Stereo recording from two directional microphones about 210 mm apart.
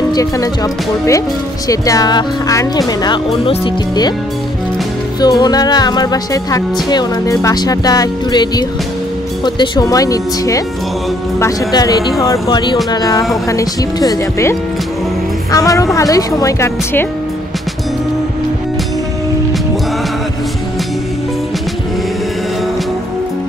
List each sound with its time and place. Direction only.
0.1 s speech: 15° left (ahead or behind)
1.7 s a woman's voice: 15° left (ahead or behind)
5.2 s a woman's voice: 20° left (ahead or behind)